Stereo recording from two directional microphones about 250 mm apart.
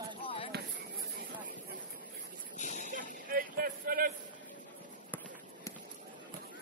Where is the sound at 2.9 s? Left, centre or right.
Right.